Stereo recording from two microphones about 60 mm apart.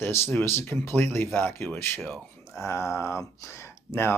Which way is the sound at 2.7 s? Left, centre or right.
Left.